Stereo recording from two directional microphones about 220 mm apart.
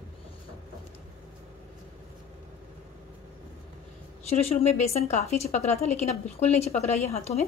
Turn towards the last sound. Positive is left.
turn(degrees=30)  # may be behind; listen again after turning